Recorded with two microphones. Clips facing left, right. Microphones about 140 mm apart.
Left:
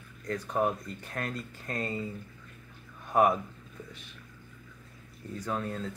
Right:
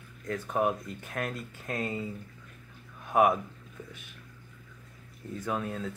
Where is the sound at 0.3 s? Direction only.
5° right (ahead or behind).